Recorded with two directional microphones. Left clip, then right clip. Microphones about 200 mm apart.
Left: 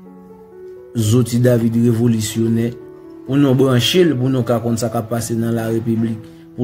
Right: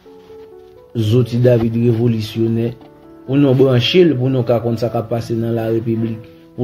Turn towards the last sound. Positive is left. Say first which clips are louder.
# right 1 dB
turn(degrees=20)  # may be behind; listen again after turning